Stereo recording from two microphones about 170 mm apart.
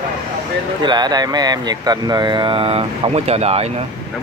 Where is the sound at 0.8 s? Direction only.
25° right (ahead or behind).